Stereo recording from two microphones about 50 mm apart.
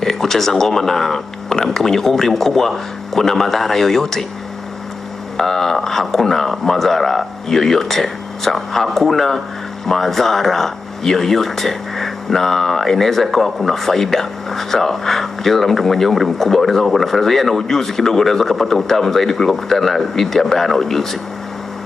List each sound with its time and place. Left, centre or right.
0.0 s speech: centre
5.4 s speech: centre